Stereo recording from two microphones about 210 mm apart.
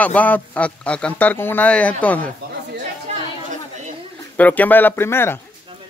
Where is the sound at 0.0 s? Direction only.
5° left (ahead or behind).